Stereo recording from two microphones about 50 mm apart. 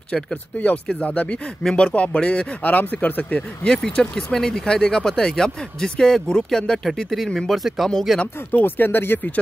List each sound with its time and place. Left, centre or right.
1.0 s speech: left
1.6 s speech: centre
2.0 s speech: left
2.6 s speech: left
3.7 s speech: centre
7.3 s speech: centre
8.5 s speech: left